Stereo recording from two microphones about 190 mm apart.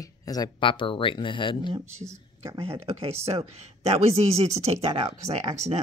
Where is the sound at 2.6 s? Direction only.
30° right (ahead or behind).